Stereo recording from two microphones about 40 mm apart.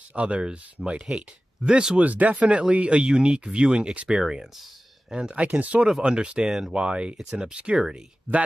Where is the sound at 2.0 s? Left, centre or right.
Right.